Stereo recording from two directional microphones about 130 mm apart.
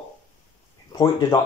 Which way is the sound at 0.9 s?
30° left (ahead or behind).